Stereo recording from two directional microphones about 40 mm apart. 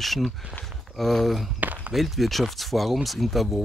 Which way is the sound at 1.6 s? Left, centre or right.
Right.